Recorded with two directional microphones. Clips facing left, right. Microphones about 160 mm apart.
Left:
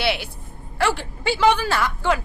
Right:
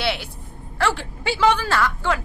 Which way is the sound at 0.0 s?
10° left (ahead or behind).